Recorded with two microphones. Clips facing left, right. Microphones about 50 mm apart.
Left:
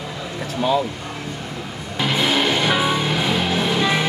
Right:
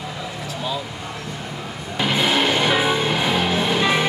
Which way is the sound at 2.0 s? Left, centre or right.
Centre.